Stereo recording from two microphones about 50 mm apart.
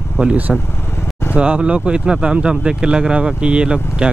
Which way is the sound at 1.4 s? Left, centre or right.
Right.